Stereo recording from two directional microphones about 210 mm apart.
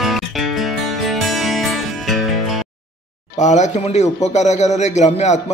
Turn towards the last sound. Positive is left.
turn(degrees=35)  # may be behind; listen again after turning